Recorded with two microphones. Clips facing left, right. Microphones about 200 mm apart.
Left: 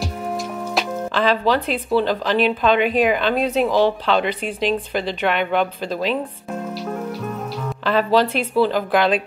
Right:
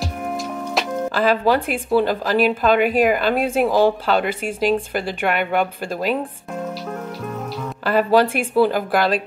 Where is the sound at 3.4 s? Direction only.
50° right (ahead or behind).